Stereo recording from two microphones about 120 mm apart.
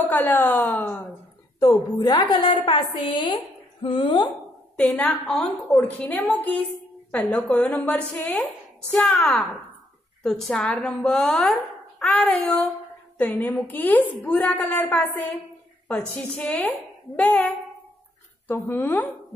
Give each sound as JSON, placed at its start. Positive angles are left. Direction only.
{"t": 0.0, "sound": "a woman's voice", "side_deg": 15}
{"t": 1.6, "sound": "a woman's voice", "side_deg": 35}
{"t": 4.7, "sound": "a woman's voice", "side_deg": 10}
{"t": 18.5, "sound": "a woman's voice", "side_deg": 15}